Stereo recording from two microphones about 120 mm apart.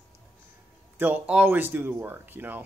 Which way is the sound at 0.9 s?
15° right (ahead or behind).